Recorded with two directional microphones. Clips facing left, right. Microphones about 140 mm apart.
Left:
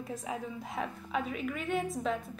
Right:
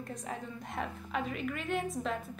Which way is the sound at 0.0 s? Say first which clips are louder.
Left 3 dB; 5° left (ahead or behind).